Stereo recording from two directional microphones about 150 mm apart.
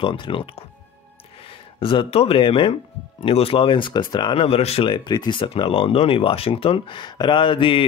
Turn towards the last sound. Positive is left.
turn(degrees=35)  # may be behind; listen again after turning